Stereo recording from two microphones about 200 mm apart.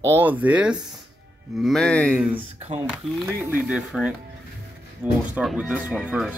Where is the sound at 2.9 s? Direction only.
5° right (ahead or behind).